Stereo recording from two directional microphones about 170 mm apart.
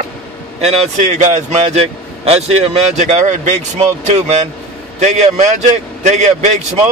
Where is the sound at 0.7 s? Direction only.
40° right (ahead or behind).